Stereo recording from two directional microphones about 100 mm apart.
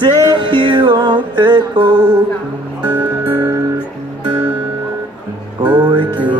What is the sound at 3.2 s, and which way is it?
Music, 50° right (ahead or behind).